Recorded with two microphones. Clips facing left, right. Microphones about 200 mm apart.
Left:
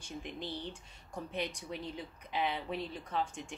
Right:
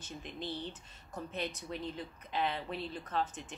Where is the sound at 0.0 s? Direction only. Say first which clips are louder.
Left 1 dB; 10° left (ahead or behind).